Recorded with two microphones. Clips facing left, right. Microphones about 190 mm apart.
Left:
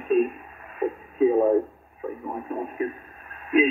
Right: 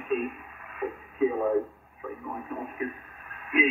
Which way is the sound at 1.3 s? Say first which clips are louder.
Left 6 dB; 35° left (ahead or behind).